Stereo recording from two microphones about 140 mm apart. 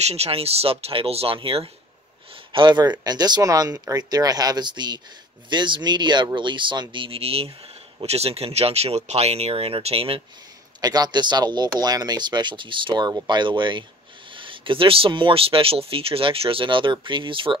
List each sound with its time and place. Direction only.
0.0 s speech: 50° right (ahead or behind)
10.8 s speech: 30° right (ahead or behind)